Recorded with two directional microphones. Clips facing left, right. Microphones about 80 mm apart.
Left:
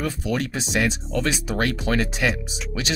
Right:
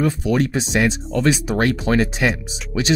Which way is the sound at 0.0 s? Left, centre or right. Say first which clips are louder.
Right 7 dB; right.